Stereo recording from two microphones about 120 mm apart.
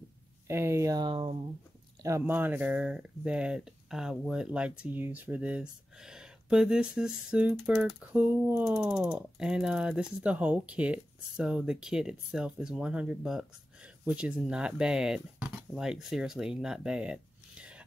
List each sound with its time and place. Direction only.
0.5 s speech: 20° right (ahead or behind); by 1.4 s 50° right (ahead or behind)
2.0 s speech: 20° right (ahead or behind)
8.7 s speech: 5° right (ahead or behind)